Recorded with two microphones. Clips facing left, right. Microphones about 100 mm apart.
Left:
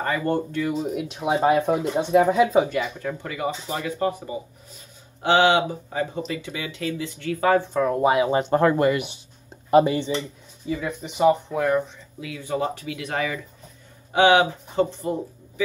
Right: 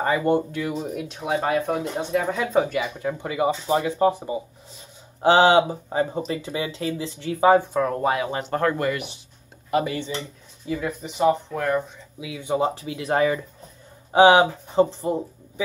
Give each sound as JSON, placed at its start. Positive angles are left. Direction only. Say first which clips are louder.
{"t": 0.0, "sound": "speech", "louder": "right 3 dB", "side_deg": -15}
{"t": 1.2, "sound": "speech", "louder": "left 4 dB", "side_deg": 20}
{"t": 3.0, "sound": "speech", "louder": "right 4 dB", "side_deg": -15}
{"t": 7.7, "sound": "speech", "louder": "left 3 dB", "side_deg": 5}
{"t": 10.7, "sound": "speech", "louder": "even", "side_deg": 0}
{"t": 12.2, "sound": "speech", "louder": "right 3 dB", "side_deg": -15}